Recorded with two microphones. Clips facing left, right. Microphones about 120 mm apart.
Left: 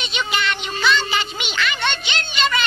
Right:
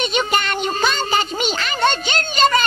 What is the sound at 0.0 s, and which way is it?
Music, 45° right (ahead or behind).